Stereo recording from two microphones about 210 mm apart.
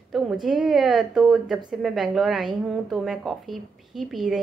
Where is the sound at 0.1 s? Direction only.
Centre (ahead or behind).